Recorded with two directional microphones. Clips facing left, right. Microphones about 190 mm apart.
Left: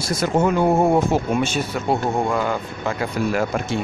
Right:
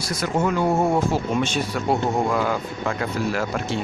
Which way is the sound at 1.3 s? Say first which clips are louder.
Left 2 dB; 5° left (ahead or behind).